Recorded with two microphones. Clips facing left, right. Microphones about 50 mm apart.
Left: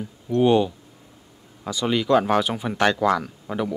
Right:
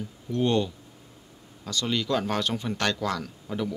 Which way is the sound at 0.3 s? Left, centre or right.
Centre.